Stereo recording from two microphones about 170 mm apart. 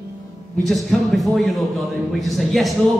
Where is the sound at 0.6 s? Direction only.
Centre (ahead or behind).